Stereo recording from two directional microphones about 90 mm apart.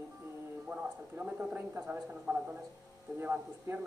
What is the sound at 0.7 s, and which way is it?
Speech, 15° right (ahead or behind).